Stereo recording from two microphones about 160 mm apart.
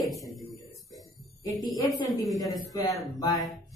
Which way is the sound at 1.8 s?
Centre (ahead or behind).